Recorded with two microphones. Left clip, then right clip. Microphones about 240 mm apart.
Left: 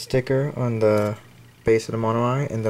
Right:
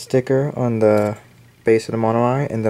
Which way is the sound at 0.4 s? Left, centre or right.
Right.